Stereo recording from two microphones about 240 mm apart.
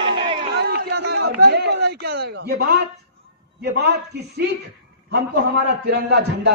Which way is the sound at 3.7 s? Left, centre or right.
Right.